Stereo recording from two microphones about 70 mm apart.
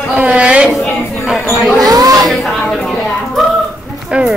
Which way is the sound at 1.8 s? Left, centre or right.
Right.